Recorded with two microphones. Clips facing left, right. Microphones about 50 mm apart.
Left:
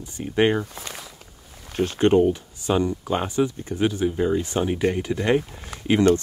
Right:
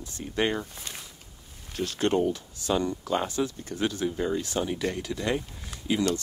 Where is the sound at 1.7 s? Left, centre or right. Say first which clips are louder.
Left 7 dB; left.